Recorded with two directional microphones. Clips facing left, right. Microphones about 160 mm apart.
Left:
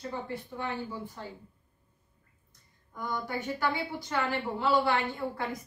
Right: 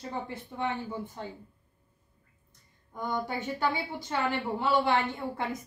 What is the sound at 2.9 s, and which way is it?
A woman's voice, 20° right (ahead or behind).